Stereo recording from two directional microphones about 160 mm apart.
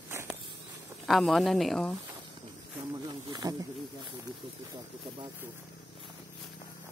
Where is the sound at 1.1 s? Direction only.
Centre (ahead or behind).